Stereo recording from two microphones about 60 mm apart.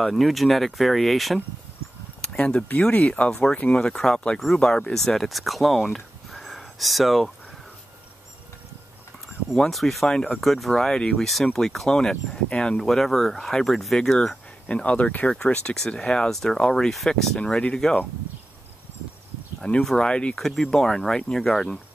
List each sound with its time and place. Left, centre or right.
0.0 s speech: centre
2.2 s speech: centre
3.3 s speech: centre
9.6 s speech: centre
11.2 s speech: centre
19.6 s speech: centre
20.3 s speech: centre